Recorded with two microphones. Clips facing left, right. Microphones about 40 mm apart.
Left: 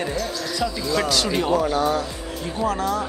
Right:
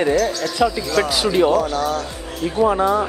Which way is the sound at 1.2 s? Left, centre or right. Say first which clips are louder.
Right 7 dB; centre.